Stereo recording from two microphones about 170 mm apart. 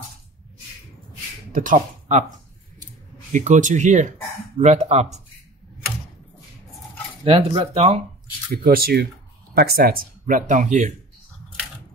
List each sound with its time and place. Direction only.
1.5 s speech: 50° right (ahead or behind)
3.3 s speech: 45° right (ahead or behind)
7.2 s speech: 35° right (ahead or behind)
8.6 s speech: 60° right (ahead or behind)